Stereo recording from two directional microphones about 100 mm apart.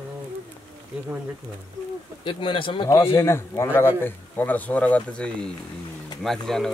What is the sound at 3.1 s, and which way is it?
A man's voice, 30° left (ahead or behind).